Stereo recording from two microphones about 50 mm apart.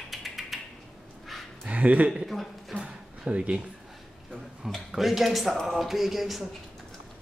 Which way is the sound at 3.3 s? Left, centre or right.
Right.